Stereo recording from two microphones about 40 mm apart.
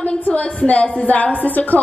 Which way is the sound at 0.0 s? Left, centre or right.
Left.